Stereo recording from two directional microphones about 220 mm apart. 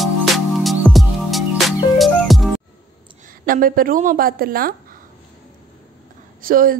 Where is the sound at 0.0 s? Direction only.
Centre (ahead or behind).